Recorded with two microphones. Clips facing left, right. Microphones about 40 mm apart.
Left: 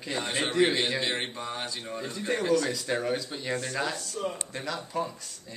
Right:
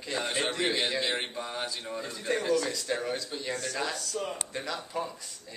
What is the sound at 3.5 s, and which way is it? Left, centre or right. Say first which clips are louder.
Speech: left 3 dB; left.